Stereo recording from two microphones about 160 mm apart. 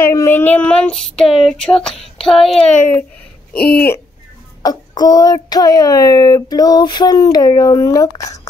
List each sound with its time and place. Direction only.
0.0 s child singing: 15° left (ahead or behind)
3.5 s speech: 80° left
4.6 s a child's voice: 25° left (ahead or behind)